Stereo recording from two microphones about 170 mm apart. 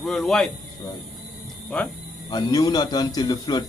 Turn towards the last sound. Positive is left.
turn(degrees=25)  # may be behind; listen again after turning